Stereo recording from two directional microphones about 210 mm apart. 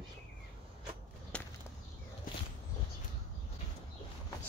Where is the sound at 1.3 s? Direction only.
5° left (ahead or behind).